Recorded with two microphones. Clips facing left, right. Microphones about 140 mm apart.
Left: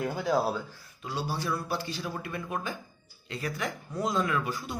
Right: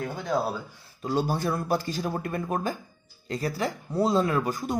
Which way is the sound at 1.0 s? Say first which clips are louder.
Right 6 dB; 50° right (ahead or behind).